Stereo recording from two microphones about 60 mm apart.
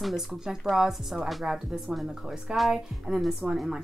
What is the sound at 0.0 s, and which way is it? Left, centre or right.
Speech, centre.